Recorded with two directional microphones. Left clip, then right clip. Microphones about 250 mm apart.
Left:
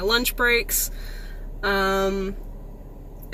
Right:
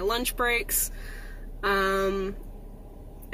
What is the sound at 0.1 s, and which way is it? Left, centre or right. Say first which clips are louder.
Speech: left 9 dB; centre.